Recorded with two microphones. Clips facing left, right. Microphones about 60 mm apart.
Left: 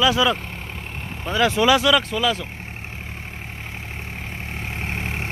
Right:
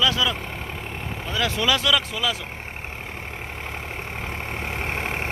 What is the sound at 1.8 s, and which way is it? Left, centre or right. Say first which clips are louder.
Speech: left 4 dB; centre.